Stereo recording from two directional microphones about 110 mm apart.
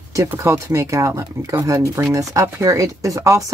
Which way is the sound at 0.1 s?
30° right (ahead or behind).